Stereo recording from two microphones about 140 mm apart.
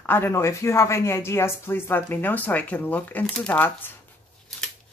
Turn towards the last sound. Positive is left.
turn(degrees=15)  # may be behind; listen again after turning